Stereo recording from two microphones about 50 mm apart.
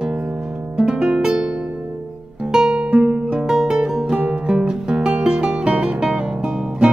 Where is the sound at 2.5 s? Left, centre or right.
Centre.